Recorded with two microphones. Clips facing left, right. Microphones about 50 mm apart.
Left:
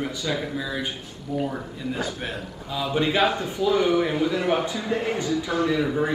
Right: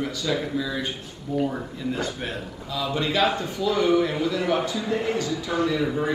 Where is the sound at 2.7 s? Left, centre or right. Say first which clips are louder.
Left 2 dB; centre.